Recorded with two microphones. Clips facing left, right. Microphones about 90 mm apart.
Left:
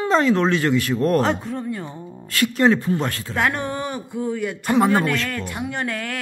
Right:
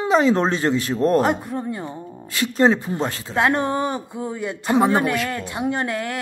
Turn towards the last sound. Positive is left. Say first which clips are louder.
# right 2 dB
turn(degrees=-20)  # may be behind; listen again after turning